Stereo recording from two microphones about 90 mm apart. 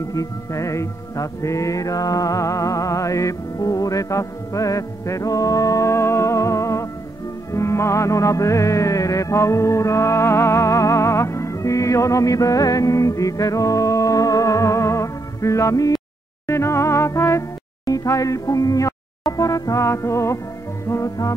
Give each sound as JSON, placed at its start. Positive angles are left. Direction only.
{"t": 0.1, "sound": "music", "side_deg": 35}